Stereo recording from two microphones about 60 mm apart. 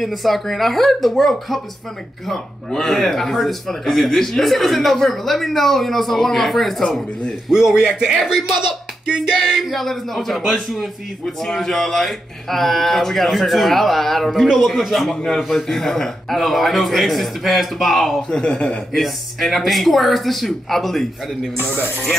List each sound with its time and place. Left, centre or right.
0.0 s a man's voice: centre
7.4 s a man's voice: centre
9.4 s a man's voice: centre
18.3 s a man's voice: centre
18.9 s a man's voice: centre
21.5 s a man's voice: left